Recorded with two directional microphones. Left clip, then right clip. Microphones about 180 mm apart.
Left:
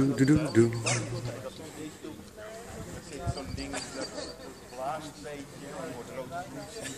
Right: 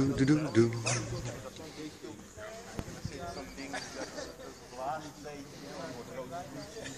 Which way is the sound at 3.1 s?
50° left (ahead or behind).